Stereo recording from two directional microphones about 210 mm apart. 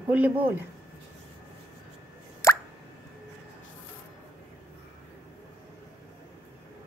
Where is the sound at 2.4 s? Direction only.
15° left (ahead or behind).